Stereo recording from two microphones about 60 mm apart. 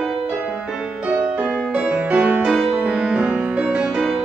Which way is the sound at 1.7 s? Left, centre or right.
Right.